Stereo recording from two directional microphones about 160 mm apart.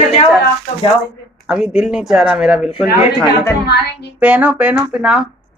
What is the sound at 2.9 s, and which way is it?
Speech, 25° left (ahead or behind).